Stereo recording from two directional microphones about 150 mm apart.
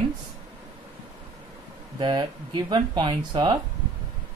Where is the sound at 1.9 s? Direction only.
30° right (ahead or behind).